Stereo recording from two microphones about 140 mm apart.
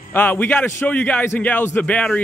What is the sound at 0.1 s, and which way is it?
A man's voice, 15° left (ahead or behind).